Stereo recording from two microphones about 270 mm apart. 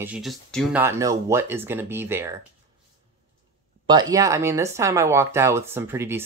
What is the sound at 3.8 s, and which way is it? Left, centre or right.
Speech, centre.